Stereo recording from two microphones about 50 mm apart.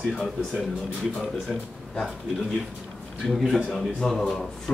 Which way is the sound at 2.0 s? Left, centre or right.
Centre.